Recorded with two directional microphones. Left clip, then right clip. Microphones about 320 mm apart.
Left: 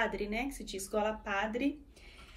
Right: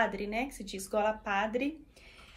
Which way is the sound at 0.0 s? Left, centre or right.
Centre.